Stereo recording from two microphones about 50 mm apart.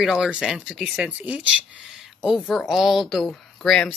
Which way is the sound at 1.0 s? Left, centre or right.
Right.